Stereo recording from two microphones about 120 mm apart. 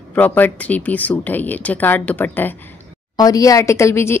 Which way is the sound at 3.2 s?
30° left (ahead or behind).